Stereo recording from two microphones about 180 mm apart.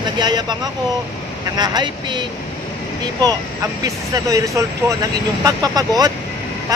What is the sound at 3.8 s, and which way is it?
Speech, 20° right (ahead or behind).